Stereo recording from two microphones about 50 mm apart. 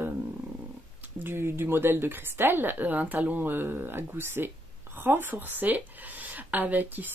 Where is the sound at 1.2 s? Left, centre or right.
Right.